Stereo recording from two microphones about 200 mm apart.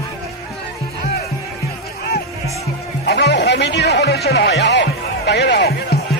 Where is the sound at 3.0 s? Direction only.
55° left (ahead or behind).